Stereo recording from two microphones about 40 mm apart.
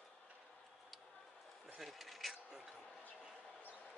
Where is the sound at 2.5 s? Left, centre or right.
Centre.